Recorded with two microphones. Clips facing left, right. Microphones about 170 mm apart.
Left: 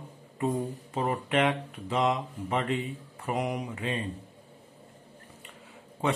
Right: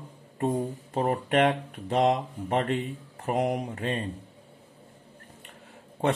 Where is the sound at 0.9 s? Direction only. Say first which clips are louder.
Right 3 dB; 45° right (ahead or behind).